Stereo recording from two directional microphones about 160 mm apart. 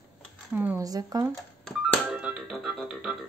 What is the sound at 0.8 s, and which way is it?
Speech, 20° right (ahead or behind).